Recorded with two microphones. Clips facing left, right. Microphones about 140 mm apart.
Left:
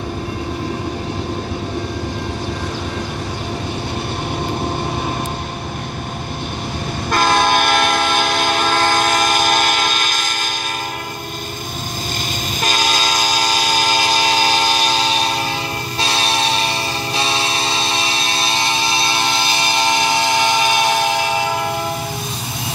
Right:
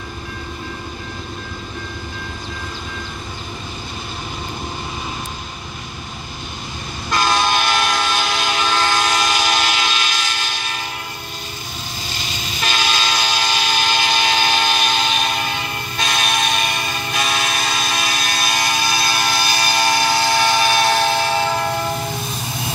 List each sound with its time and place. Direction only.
7.1 s train: 50° left (ahead or behind)
12.5 s train: 40° left (ahead or behind); by 21.7 s 10° left (ahead or behind)